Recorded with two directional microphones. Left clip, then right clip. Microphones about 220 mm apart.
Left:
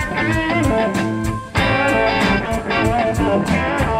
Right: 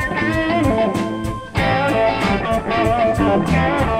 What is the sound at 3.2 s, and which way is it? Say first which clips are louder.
Music: right 1 dB; 35° right (ahead or behind).